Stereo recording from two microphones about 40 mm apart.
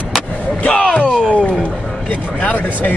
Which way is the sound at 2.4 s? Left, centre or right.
Left.